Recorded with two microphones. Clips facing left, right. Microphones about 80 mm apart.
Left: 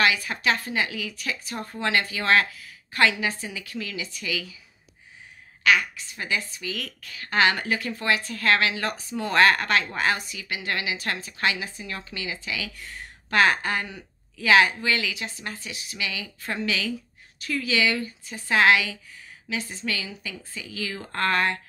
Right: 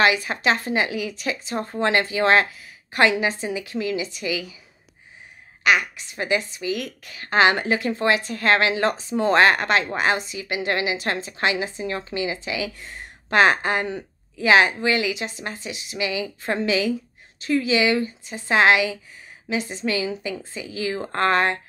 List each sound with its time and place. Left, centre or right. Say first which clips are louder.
0.0 s a woman's voice: right 4 dB; right
5.6 s a woman's voice: right 2 dB; right